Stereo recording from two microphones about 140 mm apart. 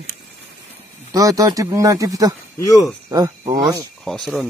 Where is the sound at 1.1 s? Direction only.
25° right (ahead or behind).